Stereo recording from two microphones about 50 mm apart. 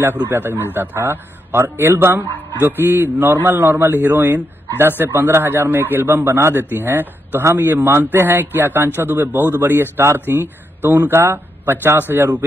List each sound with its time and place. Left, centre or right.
0.3 s speech: right
7.4 s a man's voice: right
8.0 s speech: right